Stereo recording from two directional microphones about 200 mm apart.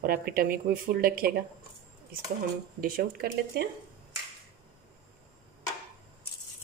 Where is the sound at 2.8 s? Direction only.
45° right (ahead or behind).